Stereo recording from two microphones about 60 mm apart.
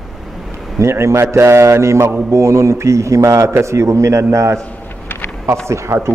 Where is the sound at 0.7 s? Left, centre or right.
Right.